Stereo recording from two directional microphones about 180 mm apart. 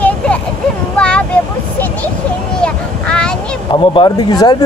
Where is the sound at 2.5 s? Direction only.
5° left (ahead or behind).